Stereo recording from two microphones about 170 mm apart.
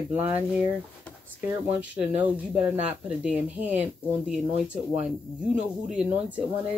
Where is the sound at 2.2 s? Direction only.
10° right (ahead or behind).